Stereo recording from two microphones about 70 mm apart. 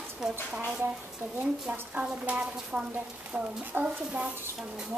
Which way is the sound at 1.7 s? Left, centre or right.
Right.